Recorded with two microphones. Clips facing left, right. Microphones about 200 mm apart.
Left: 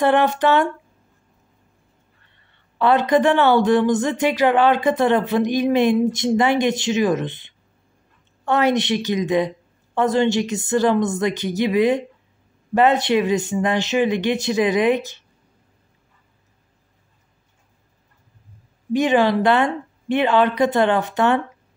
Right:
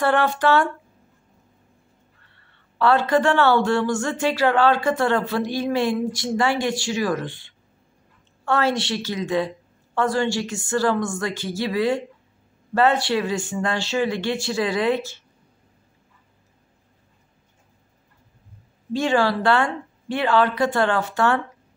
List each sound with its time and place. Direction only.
0.0 s speech: 20° left (ahead or behind)
2.3 s speech: 20° left (ahead or behind)
18.9 s speech: 20° left (ahead or behind)